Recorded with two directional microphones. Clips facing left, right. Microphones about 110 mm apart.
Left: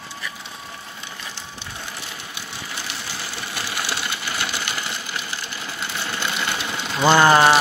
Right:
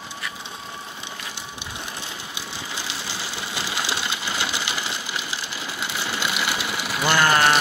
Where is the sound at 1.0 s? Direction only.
15° right (ahead or behind).